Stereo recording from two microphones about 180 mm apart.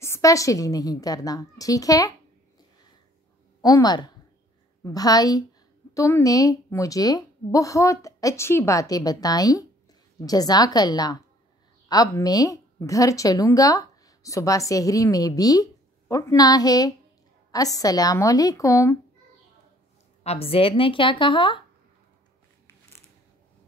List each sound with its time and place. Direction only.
0.0 s a woman's voice: 15° left (ahead or behind)
3.6 s a woman's voice: 20° left (ahead or behind)
20.2 s a woman's voice: 30° left (ahead or behind)